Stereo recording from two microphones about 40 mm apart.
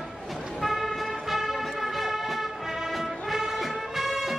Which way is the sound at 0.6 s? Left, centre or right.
Centre.